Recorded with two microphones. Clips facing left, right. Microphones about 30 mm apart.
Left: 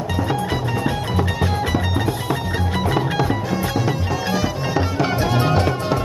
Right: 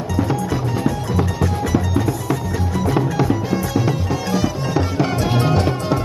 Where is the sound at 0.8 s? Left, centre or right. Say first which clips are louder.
Right 1 dB; left.